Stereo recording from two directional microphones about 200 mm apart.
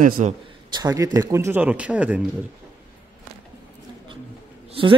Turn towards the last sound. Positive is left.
turn(degrees=-25)  # may be behind; listen again after turning